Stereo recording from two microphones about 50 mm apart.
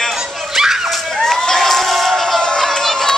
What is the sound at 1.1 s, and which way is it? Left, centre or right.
Crowd, centre.